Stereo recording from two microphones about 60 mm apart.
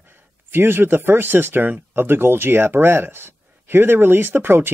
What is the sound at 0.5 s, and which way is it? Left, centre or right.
Speech, right.